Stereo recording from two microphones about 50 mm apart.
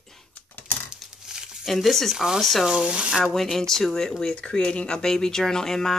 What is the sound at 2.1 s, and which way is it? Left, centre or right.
Speech, centre.